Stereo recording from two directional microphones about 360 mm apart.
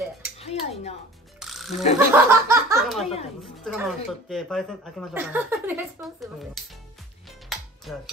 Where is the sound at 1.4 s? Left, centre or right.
Centre.